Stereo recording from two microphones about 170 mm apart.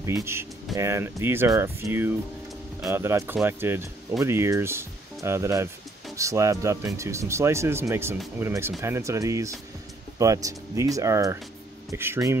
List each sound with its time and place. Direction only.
0.0 s speech: 15° right (ahead or behind)